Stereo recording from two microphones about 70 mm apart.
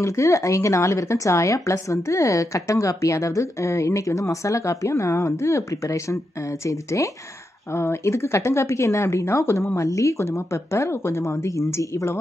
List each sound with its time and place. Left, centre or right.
0.0 s a woman's voice: left
11.2 s a woman's voice: left